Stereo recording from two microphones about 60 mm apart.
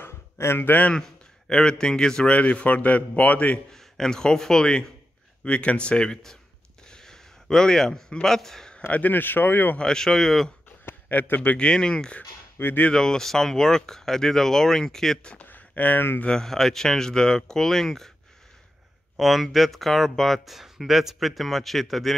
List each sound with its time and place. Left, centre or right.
0.0 s a sound: left
0.9 s a man's voice: centre
2.3 s speech: left
3.7 s speech: centre
6.9 s a sound: centre
8.9 s speech: left
9.8 s speech: centre
10.9 s a man's voice: left
11.5 s speech: centre
12.5 s speech: left
12.9 s speech: centre
15.2 s speech: left
16.3 s speech: centre
19.1 s speech: centre